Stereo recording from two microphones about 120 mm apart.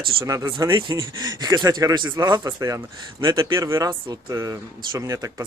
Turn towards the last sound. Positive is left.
turn(degrees=-25)  # may be behind; listen again after turning